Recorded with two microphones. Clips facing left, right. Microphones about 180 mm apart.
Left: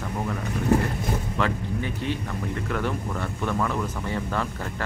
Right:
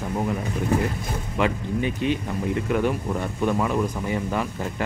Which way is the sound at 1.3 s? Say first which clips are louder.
Right 7 dB; 15° right (ahead or behind).